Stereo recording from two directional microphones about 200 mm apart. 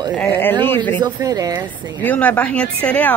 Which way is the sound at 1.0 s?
15° right (ahead or behind).